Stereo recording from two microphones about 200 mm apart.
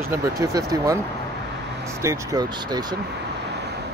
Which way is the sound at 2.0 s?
15° right (ahead or behind).